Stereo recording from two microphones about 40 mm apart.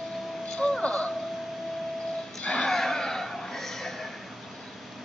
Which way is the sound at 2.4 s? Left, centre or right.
Left.